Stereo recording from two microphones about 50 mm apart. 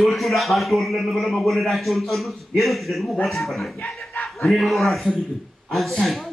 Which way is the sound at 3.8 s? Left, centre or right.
Left.